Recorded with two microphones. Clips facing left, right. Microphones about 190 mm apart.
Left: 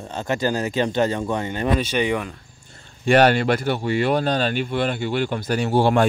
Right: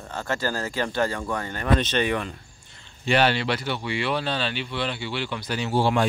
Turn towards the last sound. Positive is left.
turn(degrees=55)  # may be behind; listen again after turning